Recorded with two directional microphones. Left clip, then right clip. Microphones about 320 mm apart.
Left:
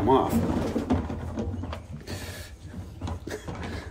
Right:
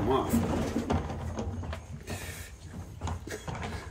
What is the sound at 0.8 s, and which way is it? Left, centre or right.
Music, right.